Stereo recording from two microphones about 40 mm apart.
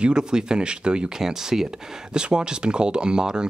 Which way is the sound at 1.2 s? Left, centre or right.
Centre.